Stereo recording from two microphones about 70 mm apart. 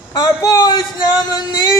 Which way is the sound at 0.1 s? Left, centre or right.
Left.